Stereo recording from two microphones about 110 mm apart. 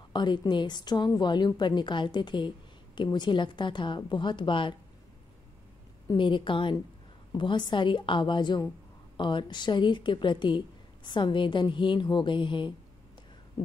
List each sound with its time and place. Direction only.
0.1 s a woman's voice: 45° left (ahead or behind)
6.1 s a woman's voice: 50° left (ahead or behind)